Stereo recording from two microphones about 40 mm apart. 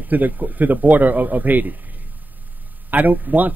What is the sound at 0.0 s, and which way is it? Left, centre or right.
Speech, right.